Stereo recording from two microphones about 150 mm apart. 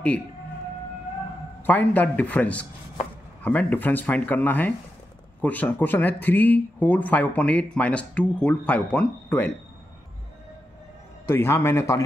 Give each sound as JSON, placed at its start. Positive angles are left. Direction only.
{"t": 1.7, "sound": "speech", "side_deg": 10}
{"t": 11.2, "sound": "speech", "side_deg": 15}